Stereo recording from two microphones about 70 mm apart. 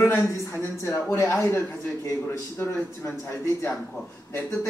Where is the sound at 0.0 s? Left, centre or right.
Left.